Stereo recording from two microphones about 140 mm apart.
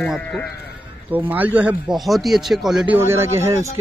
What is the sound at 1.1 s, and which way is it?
A man's voice, 15° right (ahead or behind).